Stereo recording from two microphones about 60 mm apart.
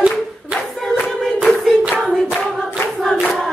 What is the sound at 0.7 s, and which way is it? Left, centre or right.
Choir, centre.